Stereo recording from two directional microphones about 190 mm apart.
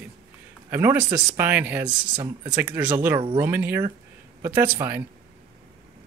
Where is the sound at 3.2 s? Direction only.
25° right (ahead or behind).